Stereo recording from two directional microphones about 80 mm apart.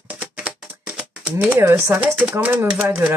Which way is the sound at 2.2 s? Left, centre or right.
Centre.